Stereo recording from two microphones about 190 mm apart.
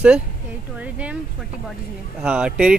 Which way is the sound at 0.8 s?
5° right (ahead or behind).